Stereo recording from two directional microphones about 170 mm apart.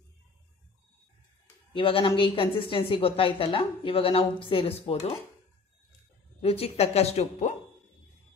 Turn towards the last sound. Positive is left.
turn(degrees=40)  # may be behind; listen again after turning